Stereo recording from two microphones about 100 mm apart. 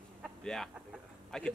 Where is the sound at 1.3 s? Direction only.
5° left (ahead or behind).